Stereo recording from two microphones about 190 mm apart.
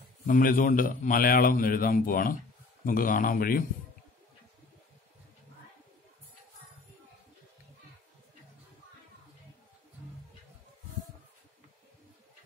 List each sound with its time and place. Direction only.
0.3 s a man's voice: 45° left (ahead or behind)